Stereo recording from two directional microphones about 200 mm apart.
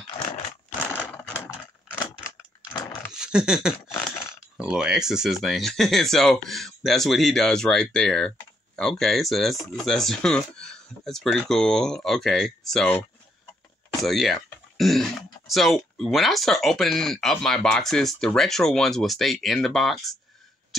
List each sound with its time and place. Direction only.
0.9 s mechanisms: 10° left (ahead or behind)
2.7 s dog: 20° left (ahead or behind)
3.1 s a sound: 5° right (ahead or behind)
4.6 s speech: 5° right (ahead or behind)
14.0 s speech: centre (ahead or behind)